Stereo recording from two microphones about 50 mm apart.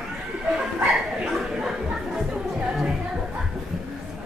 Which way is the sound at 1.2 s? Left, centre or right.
Centre.